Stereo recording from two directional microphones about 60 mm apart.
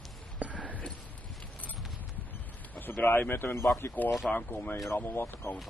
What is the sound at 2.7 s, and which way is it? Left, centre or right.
A man's voice, left.